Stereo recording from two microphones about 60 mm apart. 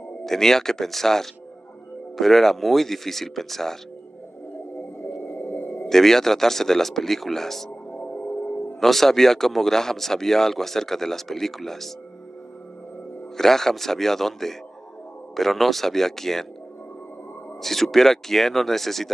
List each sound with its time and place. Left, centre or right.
0.2 s speech: centre
5.2 s a sound: left
5.9 s speech: centre
7.9 s music: centre
8.2 s music: left
8.7 s speech: centre
13.4 s speech: centre
17.6 s speech: centre